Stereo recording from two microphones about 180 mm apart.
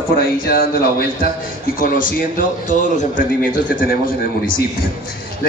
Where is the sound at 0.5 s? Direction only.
55° left (ahead or behind).